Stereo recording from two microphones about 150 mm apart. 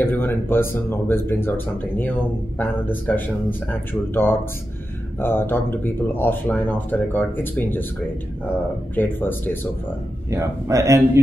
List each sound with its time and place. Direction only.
0.0 s speech: 15° left (ahead or behind)
8.9 s speech: 15° left (ahead or behind)
10.3 s speech: 20° right (ahead or behind)